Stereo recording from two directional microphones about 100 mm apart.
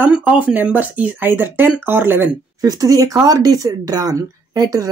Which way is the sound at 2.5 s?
35° right (ahead or behind).